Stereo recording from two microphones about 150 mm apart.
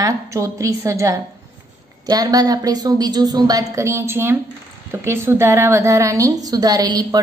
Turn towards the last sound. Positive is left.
turn(degrees=-25)  # may be behind; listen again after turning